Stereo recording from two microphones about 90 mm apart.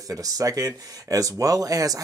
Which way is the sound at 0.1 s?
40° right (ahead or behind).